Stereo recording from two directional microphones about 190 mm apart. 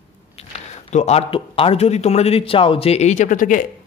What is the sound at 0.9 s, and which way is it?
Speech, 35° left (ahead or behind).